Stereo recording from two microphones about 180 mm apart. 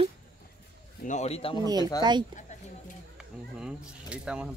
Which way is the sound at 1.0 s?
40° left (ahead or behind).